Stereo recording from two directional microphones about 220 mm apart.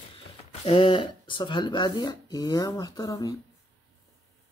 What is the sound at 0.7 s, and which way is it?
Speech, 25° left (ahead or behind).